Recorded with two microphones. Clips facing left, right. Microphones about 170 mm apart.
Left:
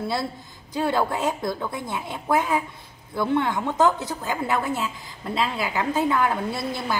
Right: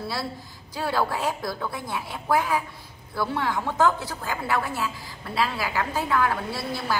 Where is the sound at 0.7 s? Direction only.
20° left (ahead or behind).